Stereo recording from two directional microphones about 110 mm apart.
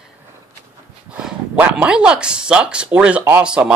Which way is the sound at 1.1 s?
10° right (ahead or behind).